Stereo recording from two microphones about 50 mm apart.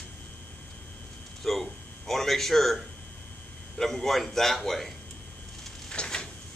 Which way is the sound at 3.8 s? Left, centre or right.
Centre.